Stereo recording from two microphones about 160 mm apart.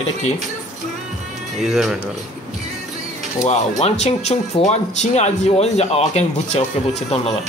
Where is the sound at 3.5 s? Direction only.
45° left (ahead or behind).